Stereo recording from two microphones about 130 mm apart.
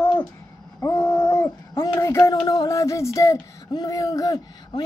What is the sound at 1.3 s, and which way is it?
Dog, 20° left (ahead or behind).